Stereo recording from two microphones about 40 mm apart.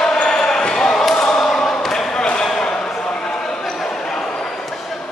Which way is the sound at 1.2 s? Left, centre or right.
Centre.